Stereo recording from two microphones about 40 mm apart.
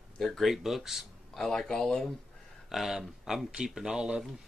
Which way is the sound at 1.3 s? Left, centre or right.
Centre.